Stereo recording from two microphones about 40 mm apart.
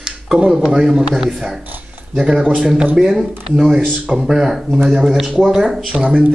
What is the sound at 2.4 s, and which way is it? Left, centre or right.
Speech, right.